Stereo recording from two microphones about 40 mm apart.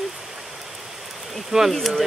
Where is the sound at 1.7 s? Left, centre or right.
Centre.